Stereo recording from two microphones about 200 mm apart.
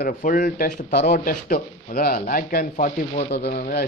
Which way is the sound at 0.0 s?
45° left (ahead or behind).